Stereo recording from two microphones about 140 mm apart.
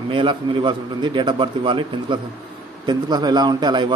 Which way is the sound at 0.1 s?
35° right (ahead or behind).